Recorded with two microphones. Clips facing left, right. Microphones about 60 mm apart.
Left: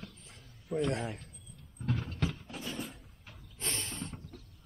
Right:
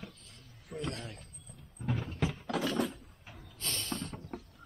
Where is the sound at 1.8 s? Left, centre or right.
Centre.